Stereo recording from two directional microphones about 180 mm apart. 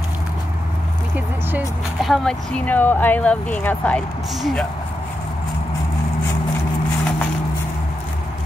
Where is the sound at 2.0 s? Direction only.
Centre (ahead or behind).